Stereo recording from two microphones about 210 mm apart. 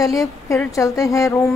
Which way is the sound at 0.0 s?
15° left (ahead or behind).